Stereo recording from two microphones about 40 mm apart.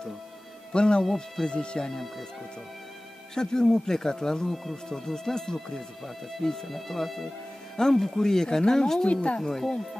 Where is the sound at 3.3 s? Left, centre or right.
Centre.